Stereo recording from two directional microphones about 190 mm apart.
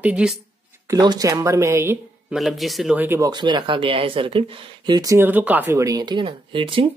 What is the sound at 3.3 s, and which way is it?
Speech, 25° right (ahead or behind).